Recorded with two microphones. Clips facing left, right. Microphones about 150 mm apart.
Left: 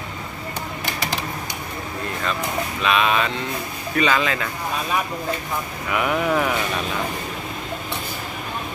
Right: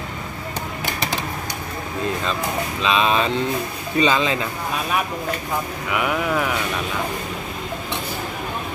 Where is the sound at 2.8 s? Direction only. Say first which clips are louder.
Right 1 dB; 30° right (ahead or behind).